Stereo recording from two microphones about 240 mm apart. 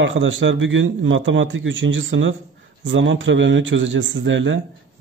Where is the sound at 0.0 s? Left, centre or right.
Right.